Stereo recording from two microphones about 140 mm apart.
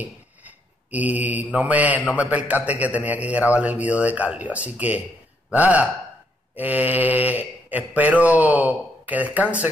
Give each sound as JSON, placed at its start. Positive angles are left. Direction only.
{"t": 0.8, "sound": "mantra", "side_deg": -10}